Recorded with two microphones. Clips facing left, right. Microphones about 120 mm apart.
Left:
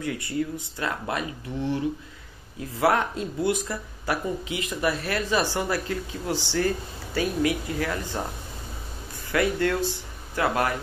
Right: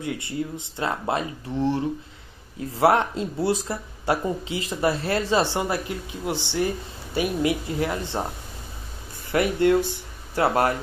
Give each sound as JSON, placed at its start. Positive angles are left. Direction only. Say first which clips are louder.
{"t": 0.0, "sound": "speech", "louder": "left 1 dB", "side_deg": -25}
{"t": 9.3, "sound": "speech", "louder": "right 4 dB", "side_deg": -20}